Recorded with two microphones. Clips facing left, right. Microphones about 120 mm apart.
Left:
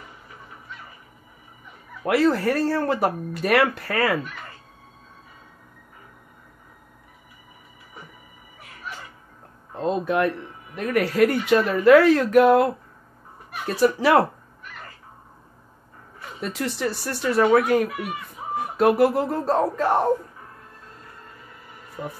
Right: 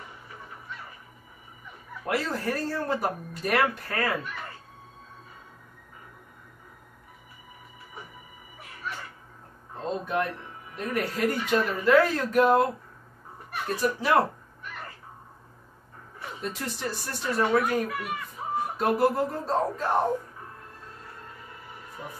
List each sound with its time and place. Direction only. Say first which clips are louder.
2.0 s speech: left 9 dB; 75° left (ahead or behind)
9.8 s speech: left 6 dB; 75° left (ahead or behind)
13.7 s speech: left 6 dB; 90° left
16.3 s speech: left 7 dB; 80° left
18.8 s speech: left 6 dB; 85° left